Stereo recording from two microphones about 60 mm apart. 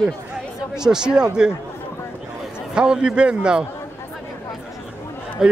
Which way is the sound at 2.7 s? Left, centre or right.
Centre.